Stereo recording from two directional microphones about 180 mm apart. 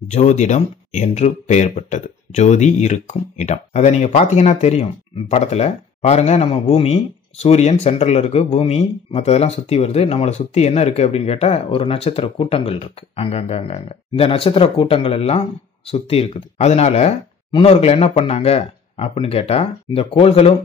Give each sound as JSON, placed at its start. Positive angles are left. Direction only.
{"t": 0.1, "sound": "speech", "side_deg": 40}